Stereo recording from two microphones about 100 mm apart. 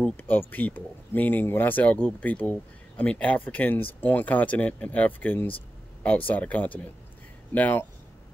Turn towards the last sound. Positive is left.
turn(degrees=20)  # may be behind; listen again after turning